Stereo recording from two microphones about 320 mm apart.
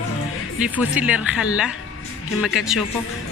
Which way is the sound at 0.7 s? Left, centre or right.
Centre.